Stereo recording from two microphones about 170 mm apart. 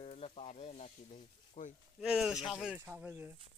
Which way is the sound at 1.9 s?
5° right (ahead or behind).